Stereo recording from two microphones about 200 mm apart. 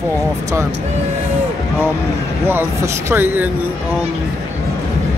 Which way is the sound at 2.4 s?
10° right (ahead or behind).